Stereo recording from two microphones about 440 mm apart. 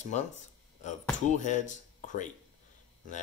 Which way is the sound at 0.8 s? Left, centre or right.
Centre.